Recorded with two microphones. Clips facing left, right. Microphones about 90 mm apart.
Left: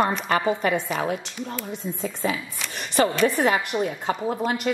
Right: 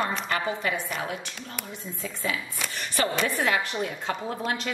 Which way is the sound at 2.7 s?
20° left (ahead or behind).